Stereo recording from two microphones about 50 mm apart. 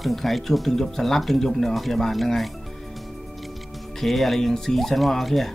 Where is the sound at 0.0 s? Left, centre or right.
Centre.